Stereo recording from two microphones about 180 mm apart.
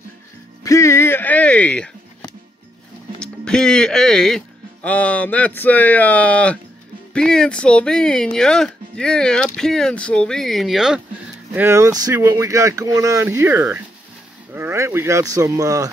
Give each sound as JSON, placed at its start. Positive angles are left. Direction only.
{"t": 0.7, "sound": "a sound", "side_deg": 15}
{"t": 3.2, "sound": "speech", "side_deg": 5}
{"t": 11.5, "sound": "speech", "side_deg": -15}